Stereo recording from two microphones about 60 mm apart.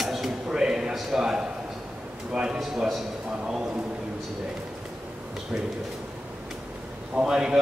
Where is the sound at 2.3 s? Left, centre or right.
Centre.